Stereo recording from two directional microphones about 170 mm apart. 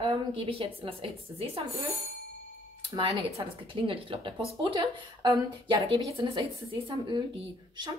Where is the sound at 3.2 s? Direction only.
35° right (ahead or behind).